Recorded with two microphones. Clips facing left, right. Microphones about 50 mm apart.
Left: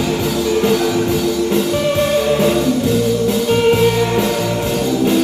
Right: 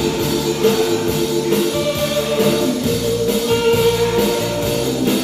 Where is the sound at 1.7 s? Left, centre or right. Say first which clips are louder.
Left 3 dB; left.